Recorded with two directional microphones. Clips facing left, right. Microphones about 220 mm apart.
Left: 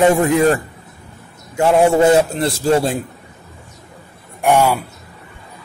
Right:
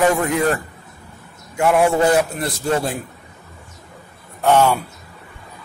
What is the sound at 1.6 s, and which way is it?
A man's voice, 25° left (ahead or behind).